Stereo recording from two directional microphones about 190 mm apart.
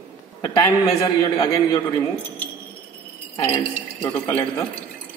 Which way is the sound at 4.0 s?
10° left (ahead or behind).